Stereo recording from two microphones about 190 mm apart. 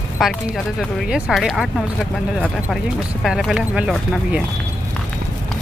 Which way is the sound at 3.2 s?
Centre (ahead or behind).